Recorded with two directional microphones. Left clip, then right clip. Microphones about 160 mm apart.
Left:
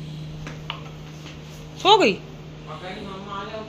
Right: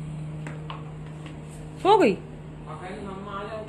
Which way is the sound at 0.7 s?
45° left (ahead or behind).